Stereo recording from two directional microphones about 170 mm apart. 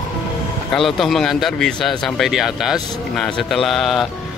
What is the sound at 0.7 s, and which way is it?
Speech, centre (ahead or behind).